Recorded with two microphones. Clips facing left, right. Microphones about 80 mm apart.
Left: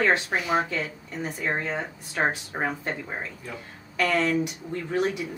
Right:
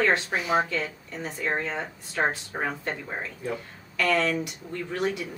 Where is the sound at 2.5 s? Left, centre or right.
Centre.